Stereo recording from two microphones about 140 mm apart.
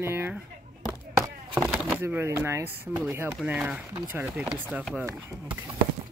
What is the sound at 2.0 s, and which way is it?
Speech, 15° right (ahead or behind).